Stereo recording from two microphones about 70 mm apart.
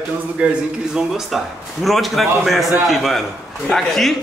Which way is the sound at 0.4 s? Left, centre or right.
Right.